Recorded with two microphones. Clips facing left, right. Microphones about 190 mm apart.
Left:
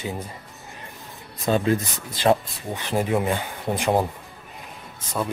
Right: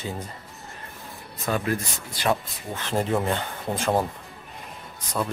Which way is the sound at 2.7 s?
10° left (ahead or behind).